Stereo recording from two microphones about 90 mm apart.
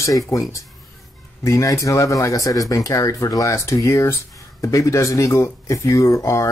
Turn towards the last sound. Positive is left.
turn(degrees=35)  # may be behind; listen again after turning